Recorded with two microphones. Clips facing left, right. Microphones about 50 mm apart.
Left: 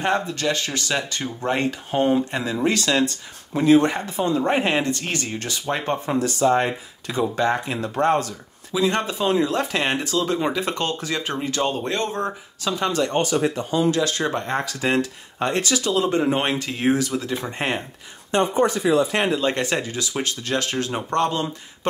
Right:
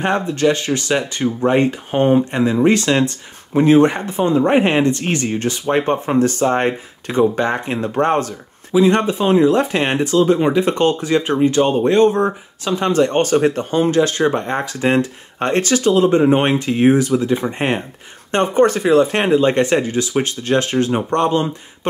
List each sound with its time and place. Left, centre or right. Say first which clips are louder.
0.0 s speech: right 6 dB; right
6.1 s speech: right 2 dB; right
13.2 s speech: right 6 dB; right
15.3 s speech: right 5 dB; right; by 17.8 s centre
18.3 s speech: right 5 dB; right
19.1 s speech: right 7 dB; right